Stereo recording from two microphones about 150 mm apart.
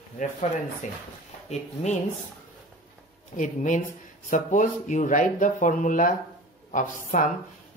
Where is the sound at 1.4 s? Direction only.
50° left (ahead or behind).